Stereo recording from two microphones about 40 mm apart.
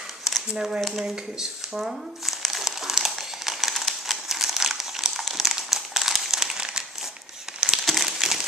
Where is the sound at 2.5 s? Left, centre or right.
Centre.